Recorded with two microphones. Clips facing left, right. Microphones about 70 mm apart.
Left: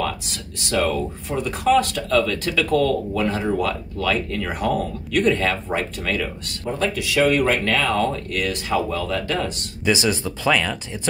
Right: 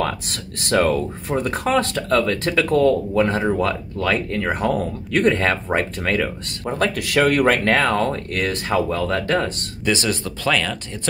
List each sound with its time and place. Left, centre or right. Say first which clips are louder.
0.0 s speech: right 2 dB; right
6.8 s speech: right 1 dB; right
9.8 s speech: left 1 dB; centre